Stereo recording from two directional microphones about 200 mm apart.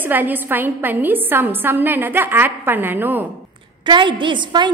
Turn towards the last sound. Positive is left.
turn(degrees=-25)  # may be behind; listen again after turning